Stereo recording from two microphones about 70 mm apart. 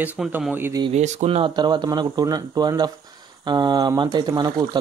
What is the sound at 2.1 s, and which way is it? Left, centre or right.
Speech, right.